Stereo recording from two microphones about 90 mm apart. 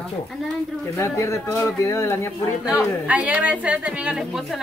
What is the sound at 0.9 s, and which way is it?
Speech, 30° left (ahead or behind).